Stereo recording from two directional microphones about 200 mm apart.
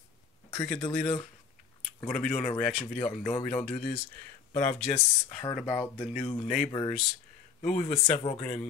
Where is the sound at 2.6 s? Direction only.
35° left (ahead or behind).